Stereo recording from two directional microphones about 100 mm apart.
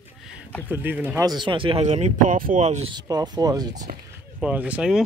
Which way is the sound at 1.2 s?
45° right (ahead or behind).